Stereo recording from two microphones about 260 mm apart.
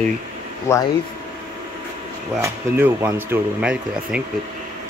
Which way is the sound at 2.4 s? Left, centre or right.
Centre.